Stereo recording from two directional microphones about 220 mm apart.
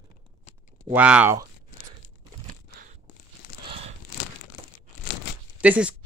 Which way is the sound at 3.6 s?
25° right (ahead or behind).